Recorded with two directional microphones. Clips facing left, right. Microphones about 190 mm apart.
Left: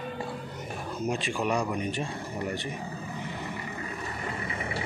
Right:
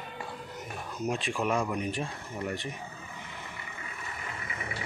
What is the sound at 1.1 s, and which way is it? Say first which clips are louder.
Speech: left 1 dB; centre (ahead or behind).